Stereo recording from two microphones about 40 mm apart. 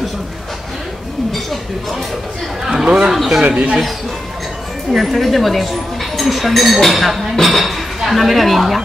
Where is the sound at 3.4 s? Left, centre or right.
Right.